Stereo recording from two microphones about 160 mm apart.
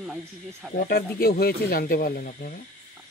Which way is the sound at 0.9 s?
70° left (ahead or behind).